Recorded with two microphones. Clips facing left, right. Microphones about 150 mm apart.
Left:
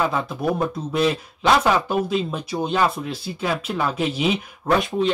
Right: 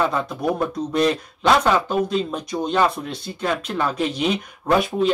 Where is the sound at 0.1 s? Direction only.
5° left (ahead or behind).